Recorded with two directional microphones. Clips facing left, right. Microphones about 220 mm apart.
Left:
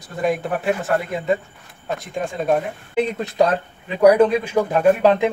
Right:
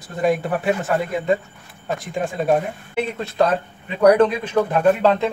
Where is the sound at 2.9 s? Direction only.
15° left (ahead or behind).